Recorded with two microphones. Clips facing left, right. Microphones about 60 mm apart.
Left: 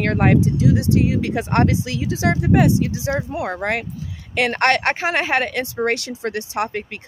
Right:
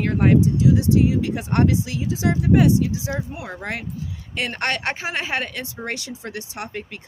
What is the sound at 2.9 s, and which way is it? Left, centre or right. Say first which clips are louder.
Speech: left 4 dB; left.